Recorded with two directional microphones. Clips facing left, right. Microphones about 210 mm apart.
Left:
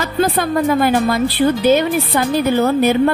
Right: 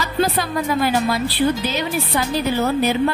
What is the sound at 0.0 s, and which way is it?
A woman's voice, 55° left (ahead or behind).